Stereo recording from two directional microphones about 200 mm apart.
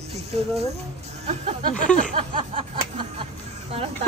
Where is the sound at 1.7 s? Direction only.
40° left (ahead or behind).